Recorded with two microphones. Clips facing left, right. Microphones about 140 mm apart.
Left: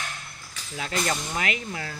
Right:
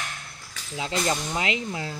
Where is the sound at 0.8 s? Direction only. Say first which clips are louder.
Right 2 dB; 20° right (ahead or behind).